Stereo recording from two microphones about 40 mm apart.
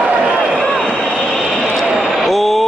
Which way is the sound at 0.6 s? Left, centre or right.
Centre.